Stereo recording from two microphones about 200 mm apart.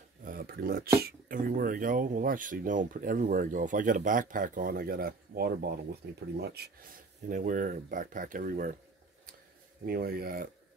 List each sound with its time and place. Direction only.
0.2 s a sound: 45° right (ahead or behind)
1.0 s speech: 45° right (ahead or behind)
9.8 s speech: 50° right (ahead or behind)